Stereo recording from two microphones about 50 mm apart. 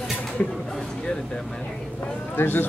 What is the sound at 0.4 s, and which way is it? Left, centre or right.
Speech, left.